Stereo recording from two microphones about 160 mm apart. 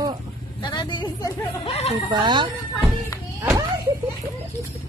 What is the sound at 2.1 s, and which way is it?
Speech, 30° right (ahead or behind).